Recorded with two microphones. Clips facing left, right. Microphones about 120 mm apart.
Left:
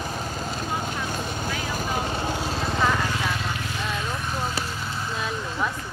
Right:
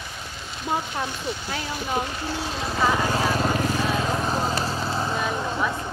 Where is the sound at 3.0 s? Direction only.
35° right (ahead or behind).